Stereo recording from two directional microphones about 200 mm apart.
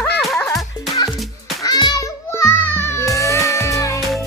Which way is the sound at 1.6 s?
20° left (ahead or behind).